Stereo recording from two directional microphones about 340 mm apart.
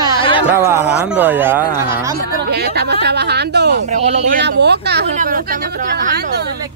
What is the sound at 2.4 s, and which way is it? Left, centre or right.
Speech, right.